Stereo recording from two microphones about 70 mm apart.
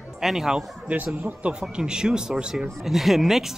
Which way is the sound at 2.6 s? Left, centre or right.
Centre.